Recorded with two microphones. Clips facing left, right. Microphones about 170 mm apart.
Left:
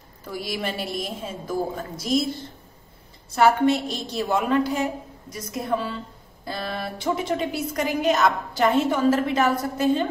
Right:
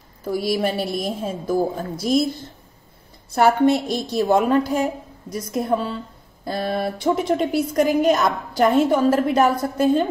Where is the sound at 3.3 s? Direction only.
45° right (ahead or behind).